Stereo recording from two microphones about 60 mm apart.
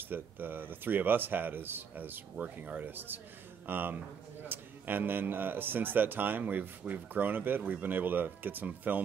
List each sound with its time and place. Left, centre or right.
0.1 s a man's voice: right
2.3 s a man's voice: right